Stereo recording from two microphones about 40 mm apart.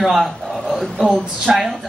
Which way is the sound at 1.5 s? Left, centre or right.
Centre.